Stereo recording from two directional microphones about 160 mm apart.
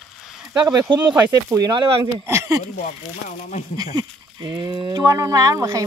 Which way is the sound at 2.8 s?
55° left (ahead or behind).